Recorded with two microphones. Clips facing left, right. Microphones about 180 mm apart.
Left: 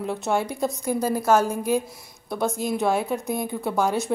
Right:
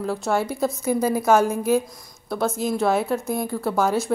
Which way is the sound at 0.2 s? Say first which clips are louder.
Right 1 dB; 5° right (ahead or behind).